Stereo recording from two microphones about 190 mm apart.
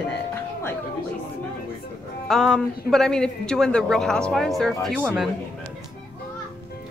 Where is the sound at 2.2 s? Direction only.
Centre (ahead or behind).